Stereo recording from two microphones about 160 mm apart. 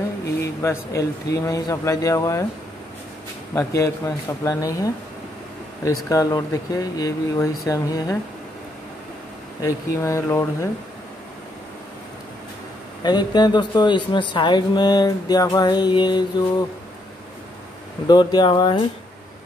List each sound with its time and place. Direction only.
0.4 s speech: 20° left (ahead or behind)
3.5 s speech: 20° left (ahead or behind)
9.6 s speech: 20° left (ahead or behind)
13.0 s speech: 25° left (ahead or behind)
18.0 s speech: 25° left (ahead or behind)